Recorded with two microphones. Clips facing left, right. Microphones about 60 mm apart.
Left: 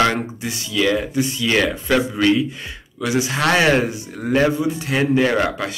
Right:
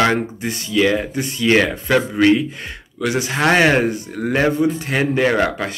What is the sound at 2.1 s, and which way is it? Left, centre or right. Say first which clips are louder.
Speech: right 3 dB; right.